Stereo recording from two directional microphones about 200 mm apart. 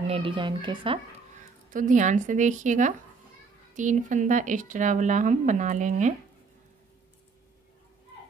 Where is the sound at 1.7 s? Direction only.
40° right (ahead or behind).